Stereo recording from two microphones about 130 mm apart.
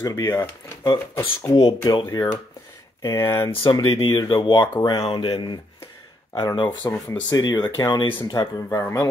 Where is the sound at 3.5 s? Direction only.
40° left (ahead or behind).